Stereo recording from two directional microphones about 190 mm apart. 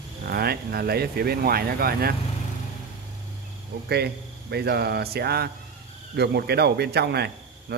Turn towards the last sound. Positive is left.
turn(degrees=-60)  # may be behind; listen again after turning